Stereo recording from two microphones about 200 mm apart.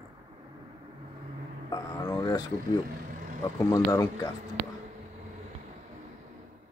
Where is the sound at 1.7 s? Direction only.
20° left (ahead or behind).